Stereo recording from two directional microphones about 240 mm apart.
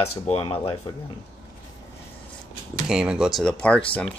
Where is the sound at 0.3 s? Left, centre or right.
Left.